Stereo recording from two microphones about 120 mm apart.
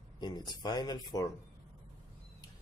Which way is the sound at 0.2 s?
35° left (ahead or behind).